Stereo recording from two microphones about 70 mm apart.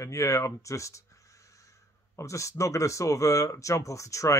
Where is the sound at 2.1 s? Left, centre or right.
Left.